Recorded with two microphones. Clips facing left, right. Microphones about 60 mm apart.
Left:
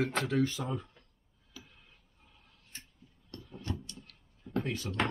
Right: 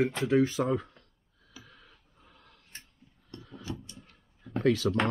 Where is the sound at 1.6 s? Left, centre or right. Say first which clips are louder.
Right 3 dB; right.